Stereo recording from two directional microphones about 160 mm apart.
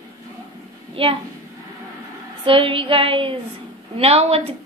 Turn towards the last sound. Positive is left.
turn(degrees=-40)  # may be behind; listen again after turning